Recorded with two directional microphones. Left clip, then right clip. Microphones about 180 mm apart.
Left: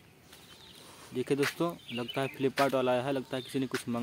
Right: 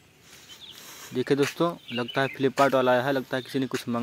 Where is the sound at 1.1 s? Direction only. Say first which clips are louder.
Right 6 dB; 20° right (ahead or behind).